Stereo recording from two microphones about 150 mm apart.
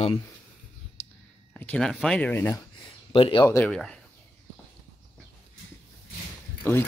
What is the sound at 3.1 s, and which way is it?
Speech, 35° left (ahead or behind).